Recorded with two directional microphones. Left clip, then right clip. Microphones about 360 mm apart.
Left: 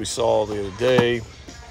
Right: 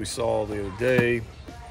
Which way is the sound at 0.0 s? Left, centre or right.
Centre.